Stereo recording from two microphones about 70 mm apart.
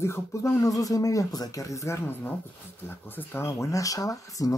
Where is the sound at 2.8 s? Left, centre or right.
Left.